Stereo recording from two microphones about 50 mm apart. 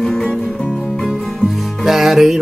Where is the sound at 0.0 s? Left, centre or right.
Centre.